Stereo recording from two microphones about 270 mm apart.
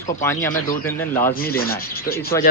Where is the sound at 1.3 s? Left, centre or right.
Left.